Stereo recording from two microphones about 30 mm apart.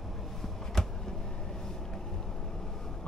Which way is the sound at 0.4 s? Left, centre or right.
Centre.